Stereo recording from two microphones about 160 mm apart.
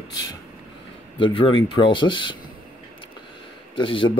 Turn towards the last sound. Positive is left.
turn(degrees=30)  # may be behind; listen again after turning